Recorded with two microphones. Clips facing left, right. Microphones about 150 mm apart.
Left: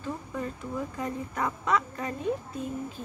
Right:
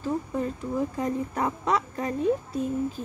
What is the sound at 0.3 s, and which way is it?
Speech, 30° right (ahead or behind).